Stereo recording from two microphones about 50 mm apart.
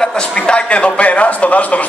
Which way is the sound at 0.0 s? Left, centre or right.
Centre.